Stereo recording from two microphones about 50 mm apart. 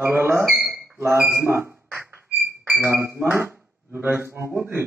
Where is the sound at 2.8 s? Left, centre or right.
Right.